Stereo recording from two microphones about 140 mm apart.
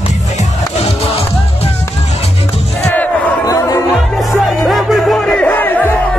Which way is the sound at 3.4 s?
25° left (ahead or behind).